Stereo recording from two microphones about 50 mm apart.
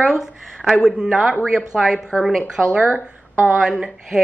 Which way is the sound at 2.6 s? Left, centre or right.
Right.